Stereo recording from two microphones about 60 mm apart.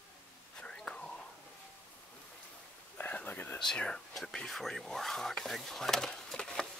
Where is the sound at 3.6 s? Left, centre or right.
Centre.